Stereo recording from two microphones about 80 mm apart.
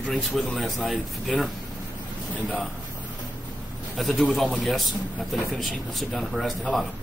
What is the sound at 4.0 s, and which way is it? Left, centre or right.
Speech, centre.